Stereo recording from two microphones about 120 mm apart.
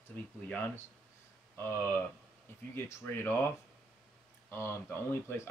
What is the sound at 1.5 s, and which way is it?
Speech, 20° left (ahead or behind).